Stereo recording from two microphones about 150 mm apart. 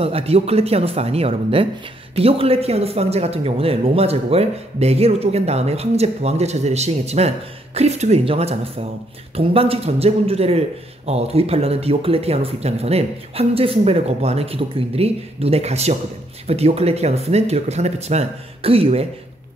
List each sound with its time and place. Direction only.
0.0 s speech: 40° right (ahead or behind)